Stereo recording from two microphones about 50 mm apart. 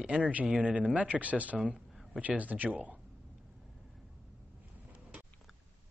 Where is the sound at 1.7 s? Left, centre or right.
Centre.